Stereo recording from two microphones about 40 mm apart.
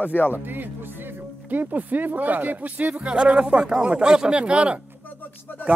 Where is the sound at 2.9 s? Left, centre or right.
Right.